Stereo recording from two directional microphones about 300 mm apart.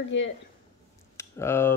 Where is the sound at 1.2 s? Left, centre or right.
Centre.